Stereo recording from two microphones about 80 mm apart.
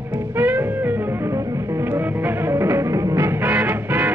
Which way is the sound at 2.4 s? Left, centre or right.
Right.